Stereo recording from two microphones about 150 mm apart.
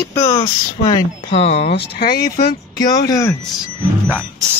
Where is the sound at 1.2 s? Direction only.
45° left (ahead or behind).